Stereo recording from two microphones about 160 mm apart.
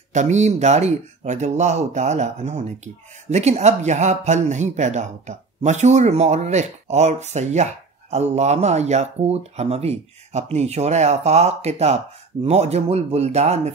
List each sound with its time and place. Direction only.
0.1 s speech: 45° right (ahead or behind)